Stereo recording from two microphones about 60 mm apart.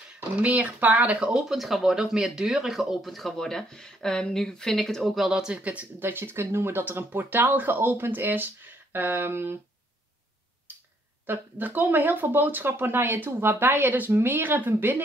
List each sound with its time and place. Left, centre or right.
0.4 s speech: right
1.5 s speech: centre
5.6 s speech: right
5.9 s speech: right
11.2 s speech: right